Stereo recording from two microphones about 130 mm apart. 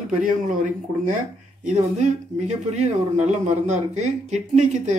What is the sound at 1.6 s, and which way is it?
Speech, 65° right (ahead or behind).